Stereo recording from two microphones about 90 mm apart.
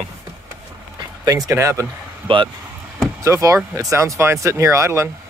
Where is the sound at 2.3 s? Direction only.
75° right (ahead or behind).